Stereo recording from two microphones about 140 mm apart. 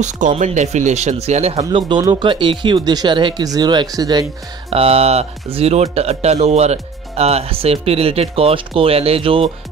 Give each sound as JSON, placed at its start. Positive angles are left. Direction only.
{"t": 0.0, "sound": "speech", "side_deg": -60}
{"t": 1.7, "sound": "speech", "side_deg": -40}
{"t": 4.6, "sound": "speech", "side_deg": -45}